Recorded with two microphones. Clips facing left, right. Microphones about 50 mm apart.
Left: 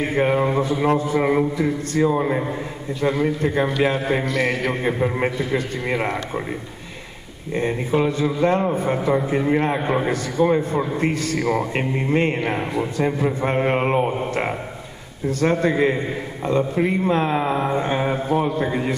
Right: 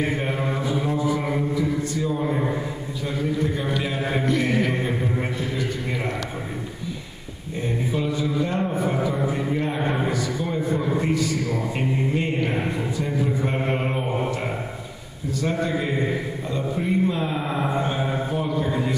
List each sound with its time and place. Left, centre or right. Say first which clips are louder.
0.2 s a man's voice: left 8 dB; left
0.8 s a man's voice: left 7 dB; left
3.0 s a man's voice: left 5 dB; left
5.2 s a man's voice: left 5 dB; left
7.5 s a man's voice: left 5 dB; left
9.8 s a man's voice: left 3 dB; centre
10.0 s a man's voice: left 6 dB; left
15.4 s a man's voice: left 7 dB; left